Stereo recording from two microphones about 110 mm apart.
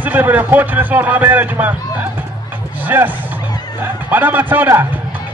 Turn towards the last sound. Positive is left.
turn(degrees=-20)  # may be behind; listen again after turning